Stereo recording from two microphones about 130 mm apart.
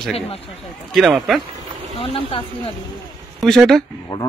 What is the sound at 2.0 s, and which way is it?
Speech, 45° left (ahead or behind).